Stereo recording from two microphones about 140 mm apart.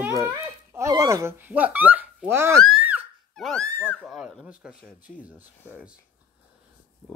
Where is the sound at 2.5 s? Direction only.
Centre (ahead or behind).